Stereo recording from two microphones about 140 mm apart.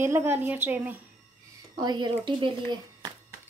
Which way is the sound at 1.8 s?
30° right (ahead or behind).